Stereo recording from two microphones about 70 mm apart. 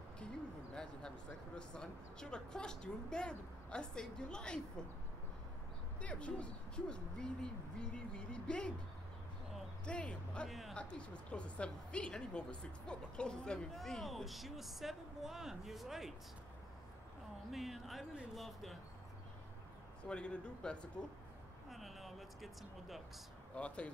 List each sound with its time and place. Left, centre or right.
0.7 s speech: centre
5.9 s speech: centre
9.8 s speech: centre
10.5 s speech: centre
10.8 s speech: centre
13.7 s speech: centre
17.5 s speech: centre
20.1 s speech: centre
21.6 s speech: centre
23.5 s speech: centre